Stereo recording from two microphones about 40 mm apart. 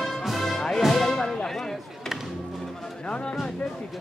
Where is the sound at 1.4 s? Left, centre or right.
Centre.